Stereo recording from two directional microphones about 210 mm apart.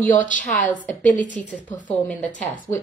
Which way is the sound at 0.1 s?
40° left (ahead or behind).